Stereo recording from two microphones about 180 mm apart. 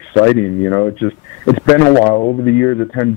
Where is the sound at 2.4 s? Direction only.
15° left (ahead or behind).